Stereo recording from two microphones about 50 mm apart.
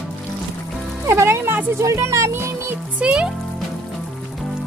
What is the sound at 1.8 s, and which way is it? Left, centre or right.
Speech, right.